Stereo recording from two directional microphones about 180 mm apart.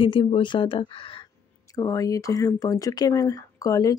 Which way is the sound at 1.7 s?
20° left (ahead or behind).